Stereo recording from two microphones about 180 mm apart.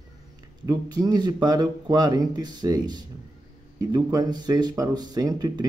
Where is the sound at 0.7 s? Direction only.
20° right (ahead or behind).